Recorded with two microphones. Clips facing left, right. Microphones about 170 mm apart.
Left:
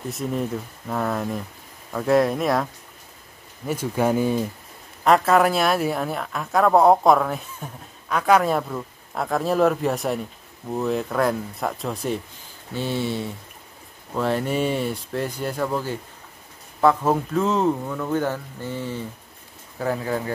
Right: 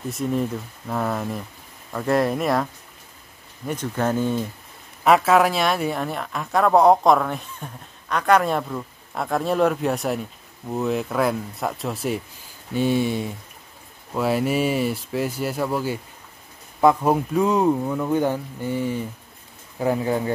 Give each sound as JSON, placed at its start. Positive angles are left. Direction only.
{"t": 0.1, "sound": "a woman's voice", "side_deg": 0}
{"t": 5.0, "sound": "a woman's voice", "side_deg": 0}